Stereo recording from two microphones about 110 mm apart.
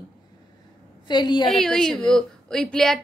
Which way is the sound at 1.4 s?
5° left (ahead or behind).